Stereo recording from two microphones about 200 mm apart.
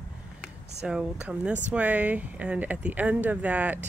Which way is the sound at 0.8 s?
5° right (ahead or behind).